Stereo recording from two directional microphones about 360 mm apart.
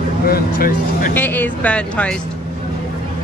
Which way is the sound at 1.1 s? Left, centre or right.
Centre.